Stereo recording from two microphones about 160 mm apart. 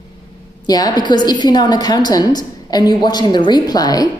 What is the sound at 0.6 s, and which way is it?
A woman's voice, 25° left (ahead or behind).